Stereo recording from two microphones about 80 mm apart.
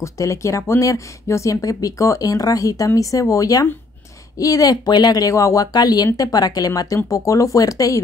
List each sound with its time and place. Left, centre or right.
0.0 s speech: left